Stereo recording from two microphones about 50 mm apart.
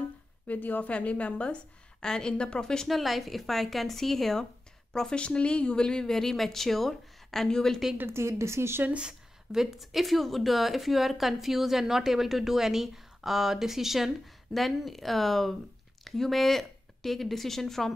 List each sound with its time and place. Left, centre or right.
0.5 s a woman's voice: left; by 2.9 s centre
2.9 s speech: centre
5.1 s speech: left
8.1 s a woman's voice: right
9.0 s speech: centre